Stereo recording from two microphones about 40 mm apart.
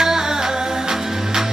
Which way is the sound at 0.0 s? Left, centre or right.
Centre.